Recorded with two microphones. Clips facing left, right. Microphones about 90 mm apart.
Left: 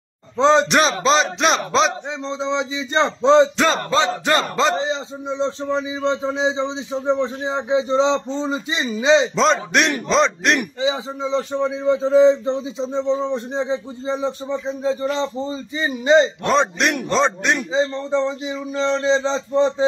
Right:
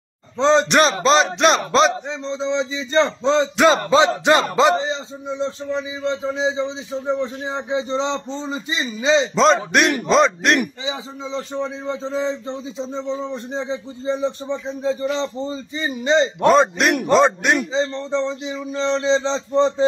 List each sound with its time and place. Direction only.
0.4 s speech: 10° left (ahead or behind)
0.7 s a man's voice: centre (ahead or behind)
2.0 s speech: 15° left (ahead or behind)
3.5 s music: 10° right (ahead or behind)
5.4 s a man's voice: 25° left (ahead or behind)
9.3 s a man's voice: centre (ahead or behind)
10.8 s a man's voice: 20° left (ahead or behind)
11.5 s speech: 10° left (ahead or behind)
14.2 s a man's voice: 5° left (ahead or behind)
16.4 s a man's voice: centre (ahead or behind)
18.1 s a man's voice: 10° left (ahead or behind)